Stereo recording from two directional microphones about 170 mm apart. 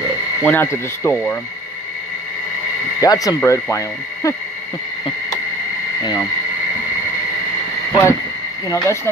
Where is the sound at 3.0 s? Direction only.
20° left (ahead or behind).